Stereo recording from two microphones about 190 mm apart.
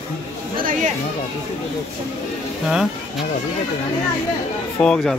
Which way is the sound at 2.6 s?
5° right (ahead or behind).